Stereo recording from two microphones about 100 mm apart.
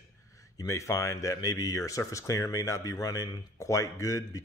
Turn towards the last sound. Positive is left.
turn(degrees=35)  # may be behind; listen again after turning